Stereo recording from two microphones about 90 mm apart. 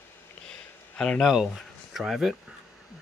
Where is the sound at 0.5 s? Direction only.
10° left (ahead or behind).